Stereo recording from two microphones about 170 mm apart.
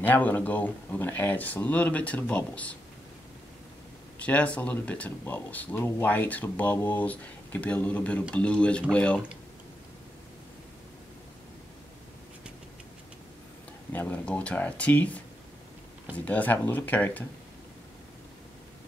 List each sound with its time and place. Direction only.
0.0 s speech: 10° left (ahead or behind)
4.2 s speech: 5° left (ahead or behind)
13.9 s speech: 10° left (ahead or behind)
16.3 s speech: 10° left (ahead or behind)